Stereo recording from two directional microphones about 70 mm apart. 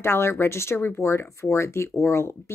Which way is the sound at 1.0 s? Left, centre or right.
Left.